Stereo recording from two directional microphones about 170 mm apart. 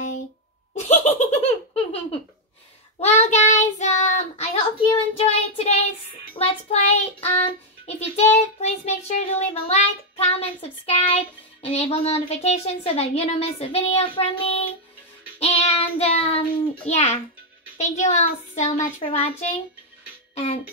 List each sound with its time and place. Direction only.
0.7 s laughter: 40° left (ahead or behind)
3.0 s child singing: 40° left (ahead or behind)
11.6 s a woman's voice: 35° left (ahead or behind)
15.3 s child singing: 35° left (ahead or behind)
17.7 s a child's voice: 45° left (ahead or behind)